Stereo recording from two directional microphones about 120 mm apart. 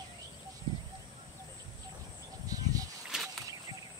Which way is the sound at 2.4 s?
30° right (ahead or behind).